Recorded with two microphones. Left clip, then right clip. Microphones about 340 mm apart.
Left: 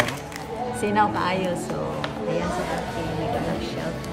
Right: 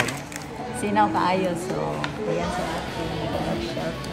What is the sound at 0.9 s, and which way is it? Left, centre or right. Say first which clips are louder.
Speech: right 2 dB; centre.